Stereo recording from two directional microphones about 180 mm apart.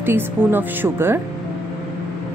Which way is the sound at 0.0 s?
10° right (ahead or behind).